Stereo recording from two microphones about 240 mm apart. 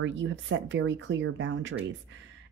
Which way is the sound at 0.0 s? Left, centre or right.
Right.